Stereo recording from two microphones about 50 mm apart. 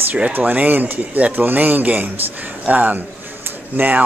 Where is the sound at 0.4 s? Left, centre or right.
Right.